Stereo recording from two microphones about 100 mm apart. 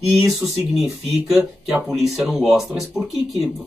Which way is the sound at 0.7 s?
5° right (ahead or behind).